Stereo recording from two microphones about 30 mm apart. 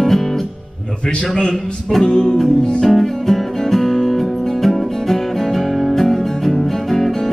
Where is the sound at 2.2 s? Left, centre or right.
Centre.